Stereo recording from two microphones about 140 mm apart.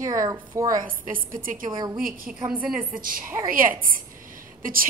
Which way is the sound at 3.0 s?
90° right.